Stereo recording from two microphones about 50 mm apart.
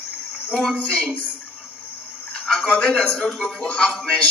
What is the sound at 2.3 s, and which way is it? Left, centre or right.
Speech, left.